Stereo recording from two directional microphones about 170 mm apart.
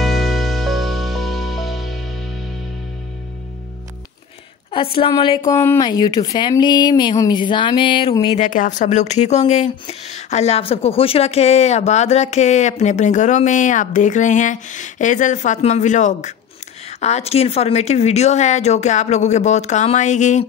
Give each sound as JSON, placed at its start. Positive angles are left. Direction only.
{"t": 0.0, "sound": "music", "side_deg": 0}
{"t": 5.1, "sound": "speech", "side_deg": 30}
{"t": 5.4, "sound": "speech", "side_deg": 15}
{"t": 8.4, "sound": "speech", "side_deg": 45}